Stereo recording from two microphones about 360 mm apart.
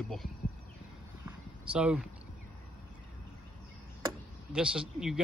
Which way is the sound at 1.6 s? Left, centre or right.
Centre.